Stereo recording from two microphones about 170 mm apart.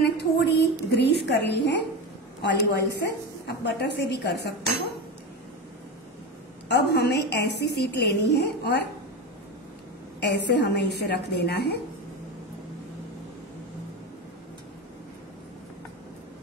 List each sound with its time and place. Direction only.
0.0 s a woman's voice: 80° left
6.7 s a woman's voice: 80° left
10.2 s a woman's voice: 90° left